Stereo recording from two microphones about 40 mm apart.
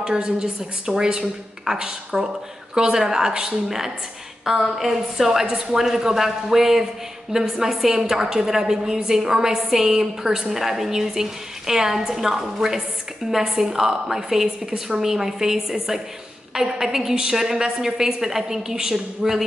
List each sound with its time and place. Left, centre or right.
0.0 s a woman's voice: centre
4.5 s a woman's voice: centre